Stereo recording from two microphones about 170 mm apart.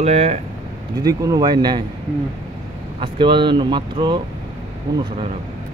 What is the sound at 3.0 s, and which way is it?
Speech, 30° right (ahead or behind).